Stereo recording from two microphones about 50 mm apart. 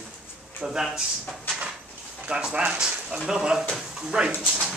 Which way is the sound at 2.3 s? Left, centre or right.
Right.